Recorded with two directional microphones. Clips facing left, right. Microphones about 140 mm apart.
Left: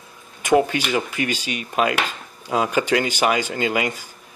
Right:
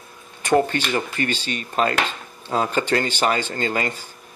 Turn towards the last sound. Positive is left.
turn(degrees=10)  # may be behind; listen again after turning